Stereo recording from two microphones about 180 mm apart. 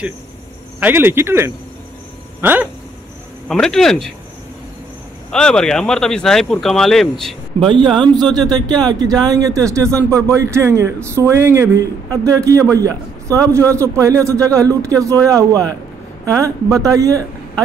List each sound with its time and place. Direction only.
0.7 s speech: 10° right (ahead or behind)
3.4 s speech: centre (ahead or behind)
5.3 s speech: 5° left (ahead or behind)
7.6 s a man's voice: 30° right (ahead or behind)